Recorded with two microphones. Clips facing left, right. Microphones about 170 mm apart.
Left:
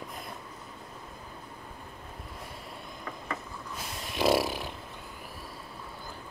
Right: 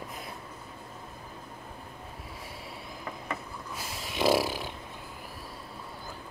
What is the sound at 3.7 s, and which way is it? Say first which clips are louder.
Snoring: even; centre (ahead or behind).